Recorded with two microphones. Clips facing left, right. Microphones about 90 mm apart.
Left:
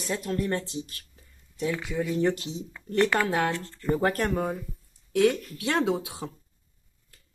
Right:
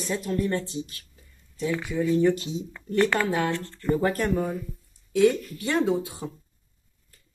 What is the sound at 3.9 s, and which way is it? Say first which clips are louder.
Speech: right 1 dB; 60° left (ahead or behind).